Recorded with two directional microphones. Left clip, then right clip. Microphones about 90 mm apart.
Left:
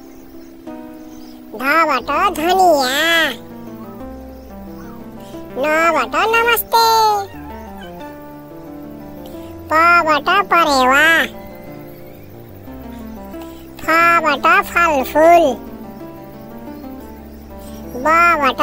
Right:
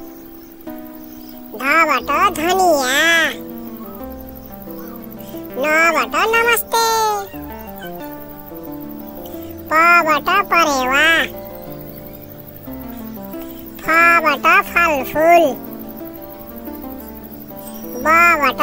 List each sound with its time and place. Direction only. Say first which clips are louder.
1.6 s speech: even; centre (ahead or behind)
2.9 s a child's voice: right 1 dB; 15° left (ahead or behind)
5.5 s speech: even; centre (ahead or behind)
9.7 s speech: even; centre (ahead or behind)
10.6 s a child's voice: left 2 dB; 40° left (ahead or behind)
13.8 s speech: even; 5° left (ahead or behind)
14.4 s speech: even; 30° left (ahead or behind)
18.0 s speech: even; centre (ahead or behind)